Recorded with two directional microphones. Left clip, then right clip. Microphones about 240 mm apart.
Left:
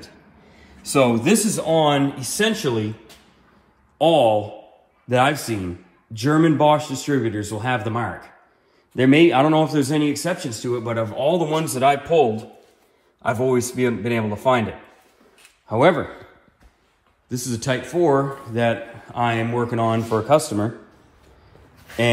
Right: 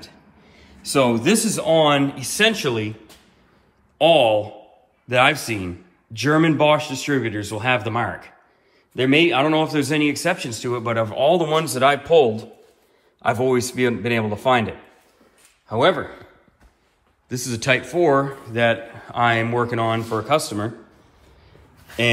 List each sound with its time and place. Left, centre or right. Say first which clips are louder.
0.6 s speech: left 1 dB; centre
4.0 s speech: right 1 dB; centre
8.9 s speech: left 2 dB; left
13.2 s speech: right 1 dB; centre
15.8 s a man's voice: left 1 dB; left
17.3 s speech: right 4 dB; centre